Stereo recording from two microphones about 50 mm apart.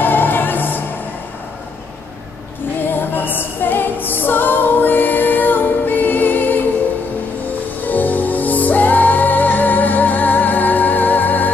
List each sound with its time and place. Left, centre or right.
0.0 s music: left
2.9 s music: left
7.8 s music: left